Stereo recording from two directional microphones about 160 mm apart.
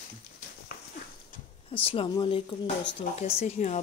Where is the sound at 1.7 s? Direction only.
35° left (ahead or behind).